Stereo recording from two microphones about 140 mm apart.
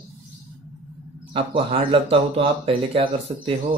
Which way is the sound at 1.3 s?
40° right (ahead or behind).